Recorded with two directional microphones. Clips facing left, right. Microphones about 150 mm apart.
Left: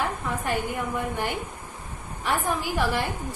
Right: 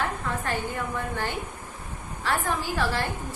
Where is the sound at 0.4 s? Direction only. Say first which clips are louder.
Left 2 dB; 15° left (ahead or behind).